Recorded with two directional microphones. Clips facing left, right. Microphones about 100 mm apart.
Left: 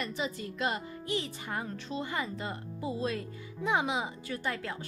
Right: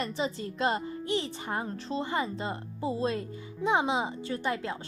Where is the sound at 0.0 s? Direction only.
30° right (ahead or behind).